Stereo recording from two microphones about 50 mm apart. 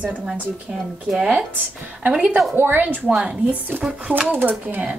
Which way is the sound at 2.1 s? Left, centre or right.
Right.